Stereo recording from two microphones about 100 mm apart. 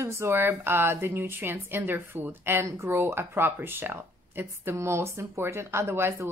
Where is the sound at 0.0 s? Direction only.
25° right (ahead or behind).